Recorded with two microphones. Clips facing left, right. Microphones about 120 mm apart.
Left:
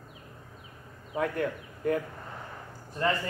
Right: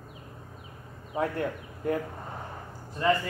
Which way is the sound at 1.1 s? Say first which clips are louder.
Even; 25° right (ahead or behind).